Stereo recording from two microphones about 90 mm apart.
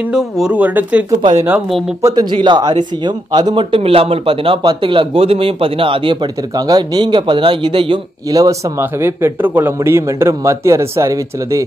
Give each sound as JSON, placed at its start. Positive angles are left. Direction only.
{"t": 0.1, "sound": "speech", "side_deg": -5}
{"t": 0.6, "sound": "speech", "side_deg": -20}
{"t": 2.0, "sound": "a man's voice", "side_deg": -40}
{"t": 2.3, "sound": "a man's voice", "side_deg": -60}
{"t": 3.7, "sound": "a man's voice", "side_deg": -90}
{"t": 6.5, "sound": "a man's voice", "side_deg": -45}
{"t": 8.3, "sound": "speech", "side_deg": -40}
{"t": 8.7, "sound": "a man's voice", "side_deg": -25}